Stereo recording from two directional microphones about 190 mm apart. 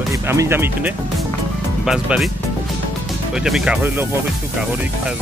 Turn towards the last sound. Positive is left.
turn(degrees=-10)  # may be behind; listen again after turning